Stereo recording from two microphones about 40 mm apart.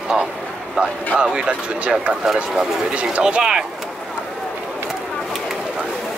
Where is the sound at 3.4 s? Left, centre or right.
Centre.